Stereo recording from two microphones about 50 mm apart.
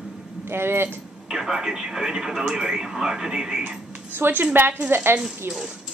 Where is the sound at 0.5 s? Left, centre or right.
Right.